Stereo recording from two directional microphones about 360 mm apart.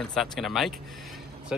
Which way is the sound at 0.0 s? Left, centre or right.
Centre.